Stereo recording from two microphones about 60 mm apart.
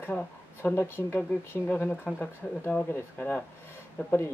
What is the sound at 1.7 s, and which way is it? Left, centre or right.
Speech, left.